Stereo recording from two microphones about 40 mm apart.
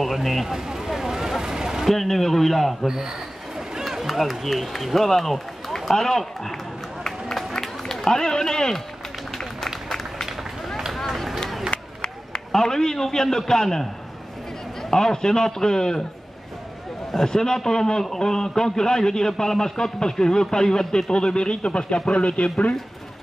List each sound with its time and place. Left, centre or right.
0.0 s speech: centre
0.5 s a sound: centre
1.9 s a man's voice: centre
3.5 s a sound: centre
4.1 s a man's voice: centre
7.0 s run: centre
8.1 s a man's voice: centre
9.8 s run: centre
11.3 s a sound: centre
12.0 s a man's voice: centre
17.1 s a man's voice: centre; by 22.7 s left